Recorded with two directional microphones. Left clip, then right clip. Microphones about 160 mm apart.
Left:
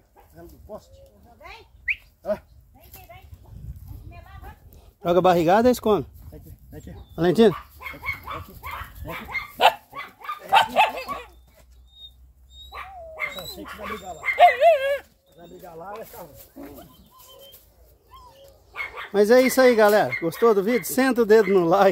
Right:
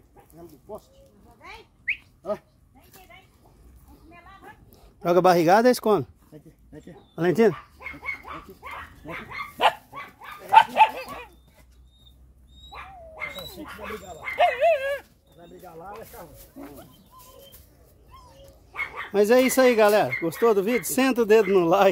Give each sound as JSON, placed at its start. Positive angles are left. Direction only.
{"t": 1.9, "sound": "dog", "side_deg": 25}
{"t": 5.0, "sound": "speech", "side_deg": -20}
{"t": 7.2, "sound": "speech", "side_deg": 0}
{"t": 7.5, "sound": "dog", "side_deg": 90}
{"t": 10.5, "sound": "dog", "side_deg": 45}
{"t": 12.7, "sound": "dog", "side_deg": 40}
{"t": 15.3, "sound": "speech", "side_deg": 5}
{"t": 18.7, "sound": "speech", "side_deg": -5}